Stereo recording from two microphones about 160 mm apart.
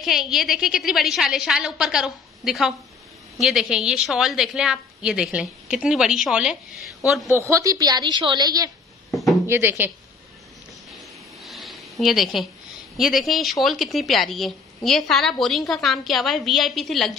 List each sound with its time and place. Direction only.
0.0 s speech: centre (ahead or behind)
7.3 s a woman's voice: 20° right (ahead or behind)
9.1 s a sound: centre (ahead or behind)
9.5 s speech: 15° right (ahead or behind)
11.4 s a sound: centre (ahead or behind)
12.9 s speech: centre (ahead or behind)